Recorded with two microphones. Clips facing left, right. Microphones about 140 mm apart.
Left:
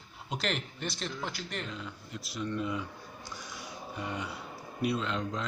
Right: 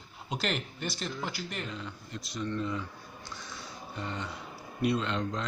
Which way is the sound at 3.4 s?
10° left (ahead or behind).